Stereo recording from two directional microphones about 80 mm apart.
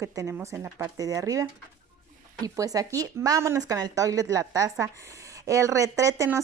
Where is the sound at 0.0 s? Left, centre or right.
Right.